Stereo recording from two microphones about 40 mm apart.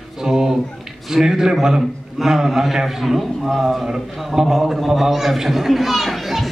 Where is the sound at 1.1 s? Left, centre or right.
Centre.